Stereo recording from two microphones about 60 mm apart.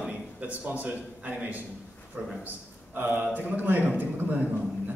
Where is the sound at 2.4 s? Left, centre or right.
Right.